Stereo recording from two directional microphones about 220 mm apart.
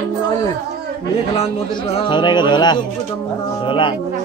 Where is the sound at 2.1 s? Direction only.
20° left (ahead or behind).